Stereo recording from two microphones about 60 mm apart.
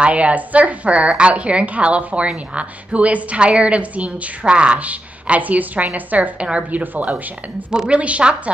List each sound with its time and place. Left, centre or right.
0.0 s a woman's voice: right
7.7 s a woman's voice: centre